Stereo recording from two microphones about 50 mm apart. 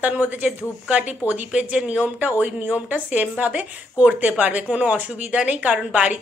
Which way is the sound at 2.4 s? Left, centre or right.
Right.